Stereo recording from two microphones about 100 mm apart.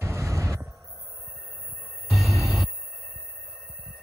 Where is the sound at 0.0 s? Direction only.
30° right (ahead or behind).